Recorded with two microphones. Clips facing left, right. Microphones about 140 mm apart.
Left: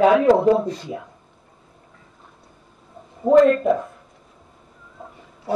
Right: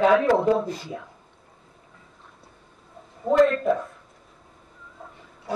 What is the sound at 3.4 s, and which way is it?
Speech, 5° left (ahead or behind).